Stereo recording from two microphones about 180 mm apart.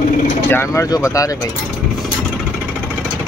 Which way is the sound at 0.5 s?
15° left (ahead or behind).